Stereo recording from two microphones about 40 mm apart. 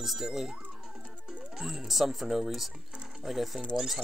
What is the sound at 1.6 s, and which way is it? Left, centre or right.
Speech, centre.